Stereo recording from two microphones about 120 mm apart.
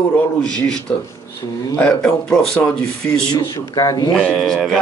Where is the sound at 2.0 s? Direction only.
5° left (ahead or behind).